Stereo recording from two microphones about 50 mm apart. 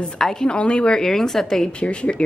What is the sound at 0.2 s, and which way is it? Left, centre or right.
Speech, centre.